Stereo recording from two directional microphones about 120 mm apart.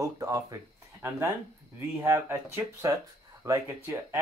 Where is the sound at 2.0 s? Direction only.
20° right (ahead or behind).